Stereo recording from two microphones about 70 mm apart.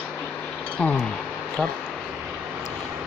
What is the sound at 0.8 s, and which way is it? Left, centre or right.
Speech, centre.